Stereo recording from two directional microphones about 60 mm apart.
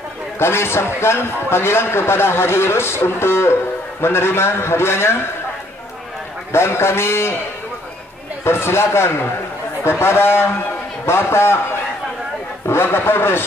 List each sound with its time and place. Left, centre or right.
0.4 s a man's voice: left
6.5 s a man's voice: left
8.5 s a man's voice: left
12.6 s a man's voice: left